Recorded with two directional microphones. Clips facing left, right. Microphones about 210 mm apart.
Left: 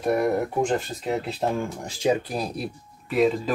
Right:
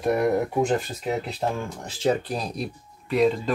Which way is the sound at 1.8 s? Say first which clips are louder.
Right 1 dB; 10° left (ahead or behind).